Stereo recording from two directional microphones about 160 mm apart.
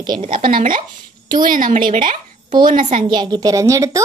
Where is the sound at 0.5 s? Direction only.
60° right (ahead or behind).